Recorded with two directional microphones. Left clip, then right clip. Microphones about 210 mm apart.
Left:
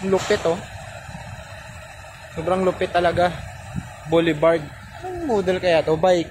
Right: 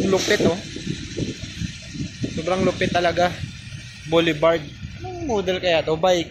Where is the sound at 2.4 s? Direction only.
10° left (ahead or behind).